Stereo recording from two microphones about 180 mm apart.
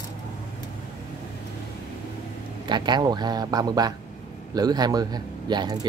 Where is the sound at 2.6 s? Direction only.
25° right (ahead or behind).